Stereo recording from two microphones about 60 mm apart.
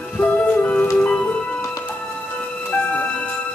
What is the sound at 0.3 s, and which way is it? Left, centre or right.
Music, centre.